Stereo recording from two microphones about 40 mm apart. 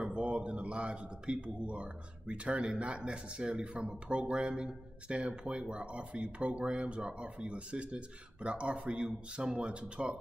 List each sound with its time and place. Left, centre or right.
0.0 s a man's voice: right